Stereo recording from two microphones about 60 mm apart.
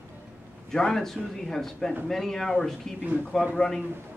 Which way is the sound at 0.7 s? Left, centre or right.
Centre.